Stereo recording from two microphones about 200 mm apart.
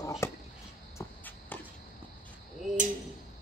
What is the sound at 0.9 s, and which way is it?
Walk, 10° left (ahead or behind).